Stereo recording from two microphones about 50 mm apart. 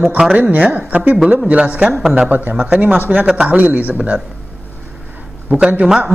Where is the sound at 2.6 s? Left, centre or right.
Right.